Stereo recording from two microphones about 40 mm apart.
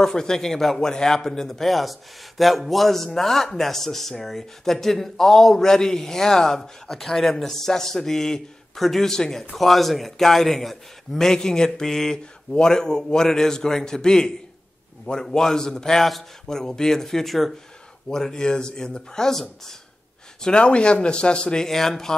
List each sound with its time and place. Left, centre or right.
0.0 s a man's voice: centre
18.1 s a man's voice: centre
20.4 s speech: left
21.6 s a man's voice: centre